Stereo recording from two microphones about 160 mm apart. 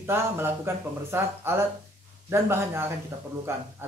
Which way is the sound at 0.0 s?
15° right (ahead or behind).